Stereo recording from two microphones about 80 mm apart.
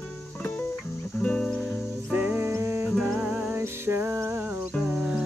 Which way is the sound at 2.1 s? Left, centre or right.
Right.